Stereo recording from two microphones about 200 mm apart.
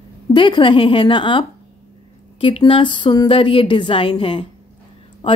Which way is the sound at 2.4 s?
25° left (ahead or behind).